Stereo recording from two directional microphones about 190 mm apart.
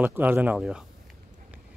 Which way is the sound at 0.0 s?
10° right (ahead or behind).